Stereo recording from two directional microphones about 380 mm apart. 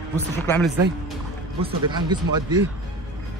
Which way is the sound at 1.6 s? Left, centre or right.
Centre.